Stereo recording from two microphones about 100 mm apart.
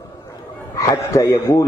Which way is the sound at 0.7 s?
35° left (ahead or behind).